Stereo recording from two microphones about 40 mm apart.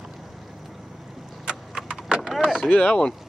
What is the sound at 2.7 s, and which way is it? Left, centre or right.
Speech, left.